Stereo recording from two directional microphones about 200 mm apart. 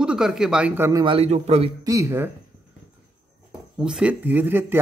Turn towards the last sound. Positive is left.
turn(degrees=-10)  # may be behind; listen again after turning